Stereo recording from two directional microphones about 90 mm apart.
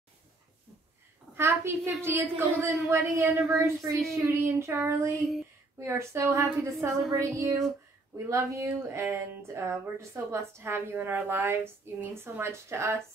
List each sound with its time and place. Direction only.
1.3 s a woman's voice: 30° right (ahead or behind)